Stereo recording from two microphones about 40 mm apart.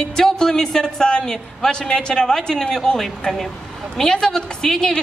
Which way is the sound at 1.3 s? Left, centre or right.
Centre.